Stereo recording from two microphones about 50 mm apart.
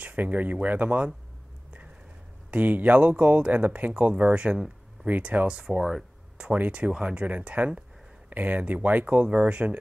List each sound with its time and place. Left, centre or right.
0.0 s speech: right
2.5 s speech: right
5.5 s speech: centre
6.5 s speech: right